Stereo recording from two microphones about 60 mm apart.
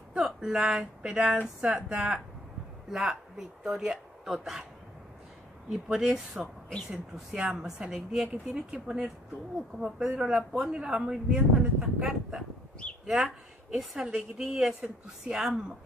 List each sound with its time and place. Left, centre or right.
0.1 s speech: centre
5.7 s speech: centre
14.7 s a woman's voice: centre
15.3 s speech: centre